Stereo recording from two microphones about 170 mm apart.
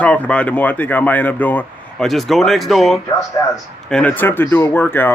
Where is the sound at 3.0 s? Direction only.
20° left (ahead or behind).